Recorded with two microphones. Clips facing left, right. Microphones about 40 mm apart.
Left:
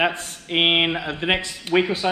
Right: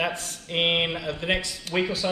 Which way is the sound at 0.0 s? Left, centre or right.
Left.